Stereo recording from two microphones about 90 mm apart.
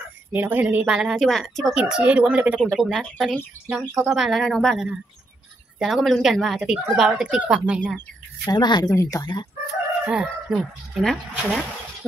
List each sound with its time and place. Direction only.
0.3 s speech: 20° right (ahead or behind)
0.8 s speech: 10° right (ahead or behind)
1.2 s speech: centre (ahead or behind)
1.7 s speech: 10° right (ahead or behind)
2.8 s speech: 5° right (ahead or behind)
4.7 s speech: 10° right (ahead or behind)
6.6 s speech: 10° right (ahead or behind)
8.5 s speech: 55° left (ahead or behind)
8.9 s speech: 40° left (ahead or behind)
10.0 s speech: 10° right (ahead or behind)